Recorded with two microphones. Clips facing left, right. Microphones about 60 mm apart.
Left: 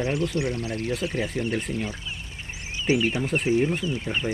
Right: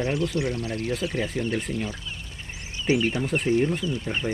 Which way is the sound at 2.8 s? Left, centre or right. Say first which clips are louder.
Even; centre.